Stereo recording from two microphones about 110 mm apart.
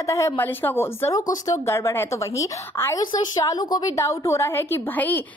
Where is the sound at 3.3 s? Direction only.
35° left (ahead or behind); by 5.2 s 15° left (ahead or behind).